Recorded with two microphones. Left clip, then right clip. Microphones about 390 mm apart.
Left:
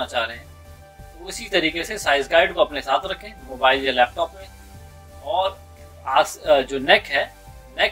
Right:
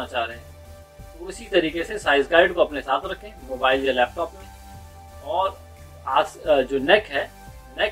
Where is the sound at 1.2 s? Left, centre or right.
Centre.